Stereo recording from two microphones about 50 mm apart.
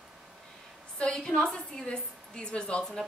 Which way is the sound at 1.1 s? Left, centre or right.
Centre.